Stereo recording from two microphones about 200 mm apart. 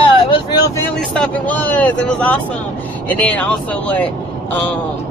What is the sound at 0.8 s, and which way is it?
Speech, 5° left (ahead or behind).